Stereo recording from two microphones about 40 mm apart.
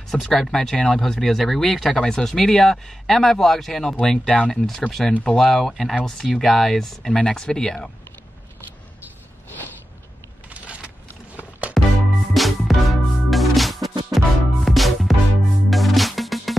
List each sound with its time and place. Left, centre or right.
0.1 s speech: centre
10.5 s vehicle: right
11.7 s music: centre